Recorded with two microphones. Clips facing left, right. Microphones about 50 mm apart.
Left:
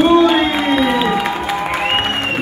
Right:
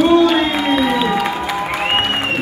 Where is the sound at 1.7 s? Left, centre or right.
Centre.